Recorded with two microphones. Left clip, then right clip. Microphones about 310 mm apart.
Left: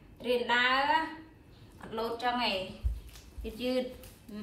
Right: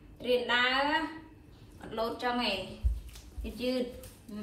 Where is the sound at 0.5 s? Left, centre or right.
Centre.